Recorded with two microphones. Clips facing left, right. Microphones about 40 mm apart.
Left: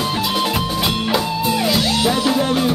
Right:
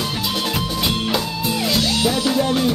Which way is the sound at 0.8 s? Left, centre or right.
Centre.